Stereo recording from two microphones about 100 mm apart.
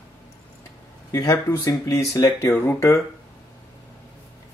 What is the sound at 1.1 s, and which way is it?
Speech, 35° left (ahead or behind).